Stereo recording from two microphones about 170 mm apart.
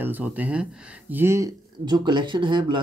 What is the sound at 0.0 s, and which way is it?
Speech, 10° right (ahead or behind).